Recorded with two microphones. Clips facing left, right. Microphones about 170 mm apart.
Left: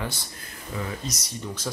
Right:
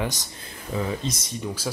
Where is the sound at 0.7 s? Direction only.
30° right (ahead or behind).